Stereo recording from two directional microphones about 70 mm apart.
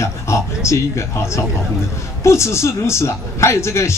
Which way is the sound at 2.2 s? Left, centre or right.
Left.